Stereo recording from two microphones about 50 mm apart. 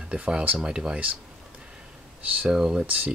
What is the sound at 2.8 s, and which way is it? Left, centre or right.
Speech, right.